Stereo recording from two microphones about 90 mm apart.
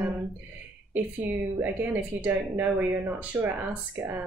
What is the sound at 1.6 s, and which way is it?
A woman's voice, 20° right (ahead or behind).